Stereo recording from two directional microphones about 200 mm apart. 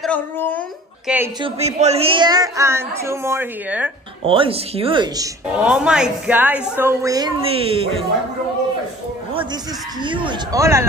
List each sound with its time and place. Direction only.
0.0 s speech: 10° left (ahead or behind)
1.0 s a woman's voice: 10° right (ahead or behind)
1.4 s a woman's voice: 30° right (ahead or behind); by 3.9 s 10° right (ahead or behind)
4.2 s speech: 25° right (ahead or behind)
5.6 s a woman's voice: 5° right (ahead or behind); by 8.0 s 25° right (ahead or behind)
10.0 s a woman's voice: 25° right (ahead or behind)